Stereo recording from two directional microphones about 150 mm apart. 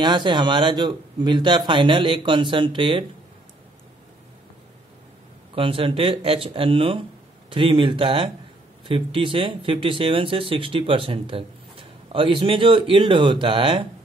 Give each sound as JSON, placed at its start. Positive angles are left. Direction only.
{"t": 0.0, "sound": "speech", "side_deg": -30}
{"t": 5.5, "sound": "speech", "side_deg": -35}